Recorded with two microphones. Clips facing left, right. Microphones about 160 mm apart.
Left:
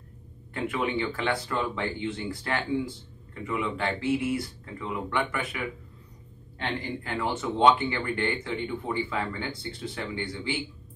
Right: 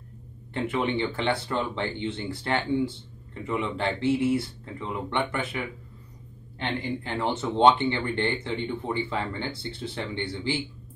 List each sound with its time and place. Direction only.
0.7 s a man's voice: 25° right (ahead or behind)
7.0 s a man's voice: 25° right (ahead or behind)